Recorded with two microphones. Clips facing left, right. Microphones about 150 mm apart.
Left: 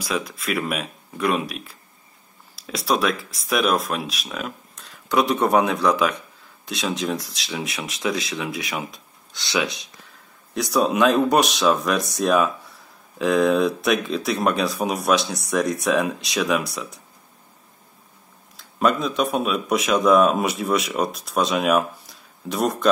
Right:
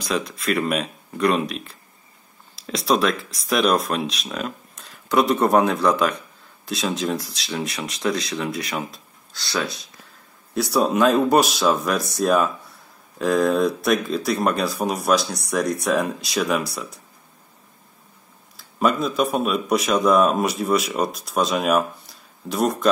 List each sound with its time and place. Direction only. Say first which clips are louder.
0.0 s speech: right 2 dB; centre (ahead or behind)
18.6 s speech: even; centre (ahead or behind)